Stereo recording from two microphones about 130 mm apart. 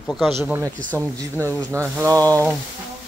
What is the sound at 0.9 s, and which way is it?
Speech, 20° right (ahead or behind).